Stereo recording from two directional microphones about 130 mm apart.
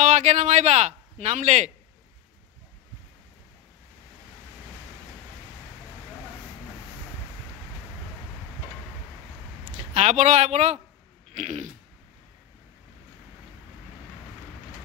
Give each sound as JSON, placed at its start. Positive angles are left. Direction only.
{"t": 0.0, "sound": "speech", "side_deg": -65}
{"t": 9.9, "sound": "speech", "side_deg": -60}
{"t": 11.3, "sound": "a sound", "side_deg": -70}